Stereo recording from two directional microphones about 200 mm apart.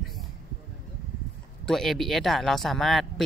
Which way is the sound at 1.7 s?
Centre (ahead or behind).